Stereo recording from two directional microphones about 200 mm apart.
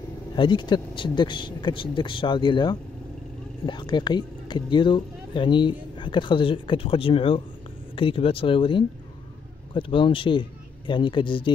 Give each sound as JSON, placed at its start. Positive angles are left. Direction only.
{"t": 0.4, "sound": "speech", "side_deg": 25}